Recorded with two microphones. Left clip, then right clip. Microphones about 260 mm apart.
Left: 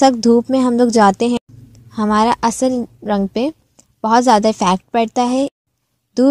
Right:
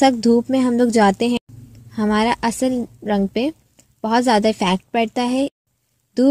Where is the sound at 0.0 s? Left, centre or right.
Left.